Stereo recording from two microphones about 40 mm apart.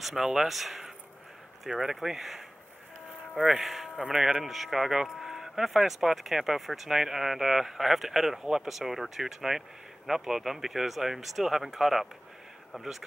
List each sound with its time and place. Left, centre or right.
0.0 s speech: centre
3.6 s speech: centre